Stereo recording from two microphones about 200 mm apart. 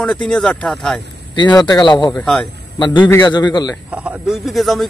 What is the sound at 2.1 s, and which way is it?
A man's voice, 5° left (ahead or behind).